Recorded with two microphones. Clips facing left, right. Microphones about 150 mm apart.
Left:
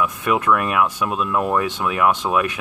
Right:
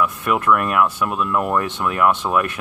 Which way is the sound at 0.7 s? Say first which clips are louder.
Right 1 dB; 15° left (ahead or behind).